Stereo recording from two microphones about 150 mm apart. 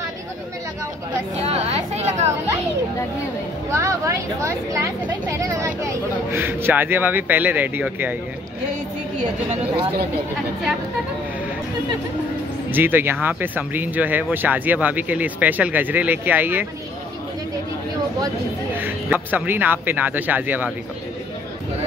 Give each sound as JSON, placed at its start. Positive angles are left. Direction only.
{"t": 1.4, "sound": "a sound", "side_deg": -40}
{"t": 3.7, "sound": "speech", "side_deg": -20}
{"t": 12.7, "sound": "speech", "side_deg": -15}
{"t": 18.8, "sound": "speech", "side_deg": -10}